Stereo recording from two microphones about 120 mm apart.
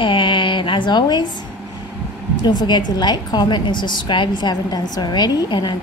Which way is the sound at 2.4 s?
35° left (ahead or behind).